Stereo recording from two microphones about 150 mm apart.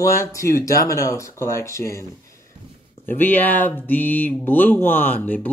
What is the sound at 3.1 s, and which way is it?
Speech, 15° left (ahead or behind).